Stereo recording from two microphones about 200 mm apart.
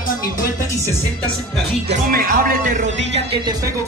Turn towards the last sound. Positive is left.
turn(degrees=-45)  # may be behind; listen again after turning